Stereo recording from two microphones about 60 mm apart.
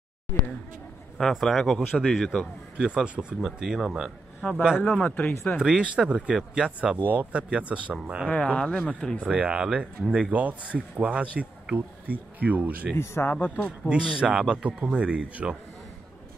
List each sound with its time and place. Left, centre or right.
1.3 s speech: centre
1.9 s speech: centre
2.1 s speech: centre
2.9 s speech: centre
3.3 s speech: centre
4.4 s a man's voice: left
5.6 s speech: centre
7.1 s speech: right
7.9 s speech: centre
8.3 s speech: left
9.2 s speech: centre
13.0 s speech: left
13.3 s speech: left
13.7 s speech: right